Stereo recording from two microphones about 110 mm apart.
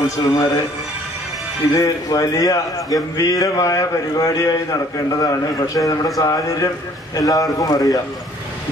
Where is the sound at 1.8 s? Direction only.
35° left (ahead or behind).